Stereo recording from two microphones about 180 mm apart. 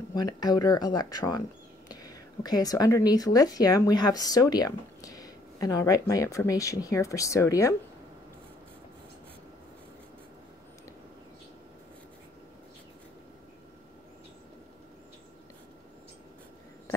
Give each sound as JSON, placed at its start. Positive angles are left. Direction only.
{"t": 0.1, "sound": "speech", "side_deg": 20}